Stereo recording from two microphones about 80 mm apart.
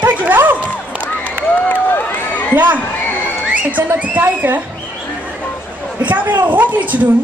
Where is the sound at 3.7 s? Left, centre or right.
Right.